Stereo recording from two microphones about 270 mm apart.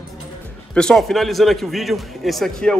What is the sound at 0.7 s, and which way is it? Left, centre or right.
A man's voice, centre.